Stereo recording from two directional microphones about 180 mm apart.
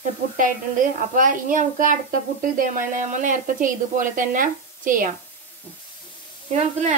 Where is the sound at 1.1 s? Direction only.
45° right (ahead or behind).